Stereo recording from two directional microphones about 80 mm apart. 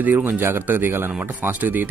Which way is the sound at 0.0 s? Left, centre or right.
Right.